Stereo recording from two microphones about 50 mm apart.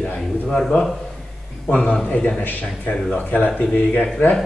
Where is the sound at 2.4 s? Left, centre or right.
Left.